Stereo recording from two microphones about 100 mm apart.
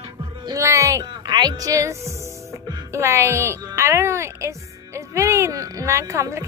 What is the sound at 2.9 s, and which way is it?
Speech, 25° right (ahead or behind).